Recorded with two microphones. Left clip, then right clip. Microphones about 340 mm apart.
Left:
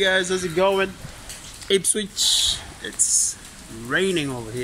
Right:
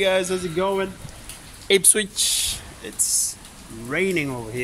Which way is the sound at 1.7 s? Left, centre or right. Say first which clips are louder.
Right 3 dB; right.